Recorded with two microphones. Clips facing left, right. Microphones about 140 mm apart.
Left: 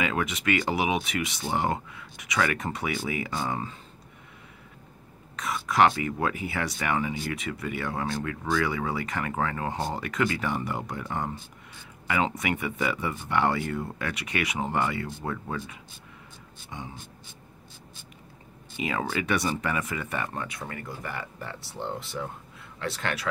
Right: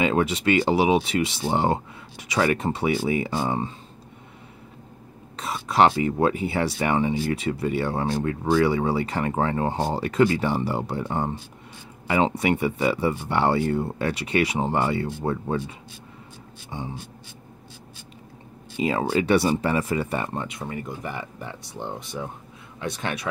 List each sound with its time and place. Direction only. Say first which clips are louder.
0.0 s speech: right 6 dB; 30° right (ahead or behind)
5.3 s speech: right 2 dB; 30° right (ahead or behind)
16.7 s speech: right 6 dB; 30° right (ahead or behind)
18.8 s speech: right 7 dB; 30° right (ahead or behind)